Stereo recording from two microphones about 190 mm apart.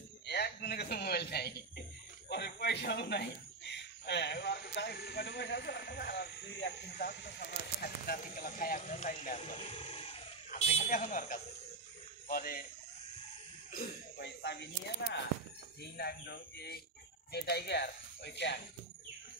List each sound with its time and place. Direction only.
0.3 s speech: 55° left (ahead or behind)
13.7 s cough: 45° left (ahead or behind)
14.2 s speech: 65° left (ahead or behind)